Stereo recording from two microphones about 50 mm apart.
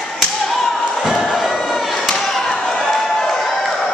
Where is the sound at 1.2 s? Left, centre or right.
Centre.